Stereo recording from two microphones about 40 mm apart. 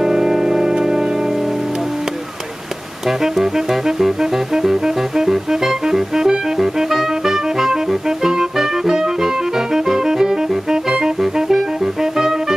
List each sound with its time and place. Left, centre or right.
0.0 s music: centre
3.1 s saxophone: centre
11.1 s music: centre